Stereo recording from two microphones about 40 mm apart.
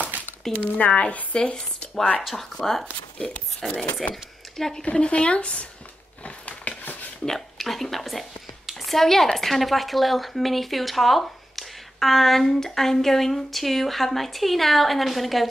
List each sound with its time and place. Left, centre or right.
0.1 s a sound: right
0.7 s speech: left
2.5 s speech: centre
4.1 s speech: centre
4.9 s speech: left
6.2 s a sound: left
7.2 s a woman's voice: centre